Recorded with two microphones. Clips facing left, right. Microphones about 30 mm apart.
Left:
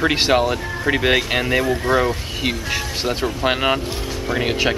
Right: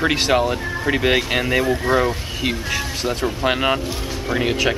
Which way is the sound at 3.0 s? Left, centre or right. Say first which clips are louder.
Left 1 dB; left.